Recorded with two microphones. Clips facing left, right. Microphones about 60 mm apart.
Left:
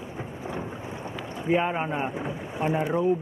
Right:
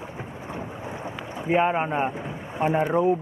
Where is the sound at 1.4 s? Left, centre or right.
Centre.